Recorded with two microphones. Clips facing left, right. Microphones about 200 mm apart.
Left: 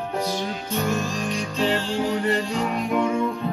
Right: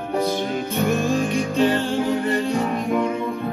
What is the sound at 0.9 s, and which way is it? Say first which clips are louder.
Music: right 6 dB; 55° right (ahead or behind).